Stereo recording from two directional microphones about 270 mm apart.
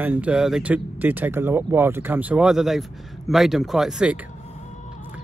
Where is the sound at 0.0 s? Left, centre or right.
Centre.